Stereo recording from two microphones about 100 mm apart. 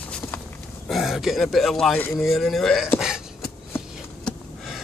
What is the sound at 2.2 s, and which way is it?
Speech, centre (ahead or behind).